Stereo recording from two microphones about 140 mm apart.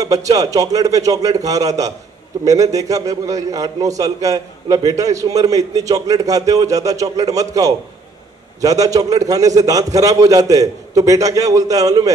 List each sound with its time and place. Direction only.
0.0 s a man's voice: 25° right (ahead or behind)